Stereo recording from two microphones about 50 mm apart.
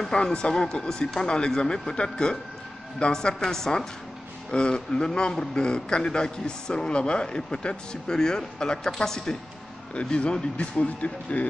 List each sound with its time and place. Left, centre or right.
0.1 s a man's voice: centre
9.9 s speech: left